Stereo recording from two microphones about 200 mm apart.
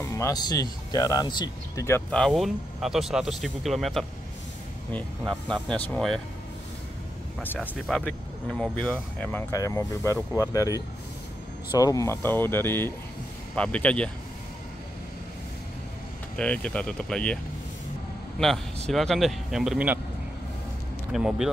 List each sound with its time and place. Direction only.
0.0 s speech: 15° left (ahead or behind)
7.3 s speech: 5° left (ahead or behind)
11.8 s speech: 15° left (ahead or behind)
16.3 s speech: 5° left (ahead or behind)
18.9 s speech: centre (ahead or behind)
21.1 s speech: 5° right (ahead or behind)